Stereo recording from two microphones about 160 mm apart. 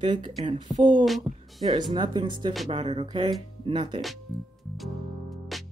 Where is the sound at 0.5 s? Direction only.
30° right (ahead or behind).